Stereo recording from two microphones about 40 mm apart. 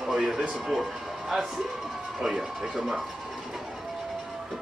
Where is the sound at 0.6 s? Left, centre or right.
Centre.